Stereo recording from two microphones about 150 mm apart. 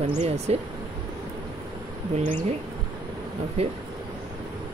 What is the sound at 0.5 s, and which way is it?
Speech, 45° right (ahead or behind).